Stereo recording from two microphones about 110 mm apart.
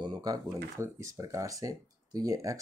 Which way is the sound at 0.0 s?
35° right (ahead or behind).